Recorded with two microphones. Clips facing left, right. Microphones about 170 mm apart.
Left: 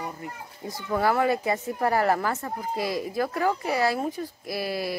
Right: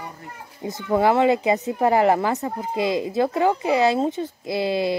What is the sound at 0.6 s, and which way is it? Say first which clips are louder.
Speech: right 6 dB; 20° right (ahead or behind).